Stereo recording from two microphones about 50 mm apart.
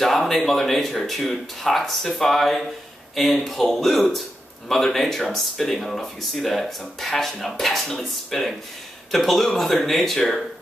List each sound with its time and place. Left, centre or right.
0.0 s speech: centre